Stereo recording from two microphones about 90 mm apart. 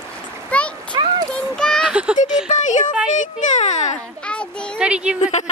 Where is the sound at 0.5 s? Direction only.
15° left (ahead or behind).